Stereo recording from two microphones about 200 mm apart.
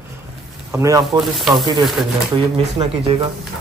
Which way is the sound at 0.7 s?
15° right (ahead or behind).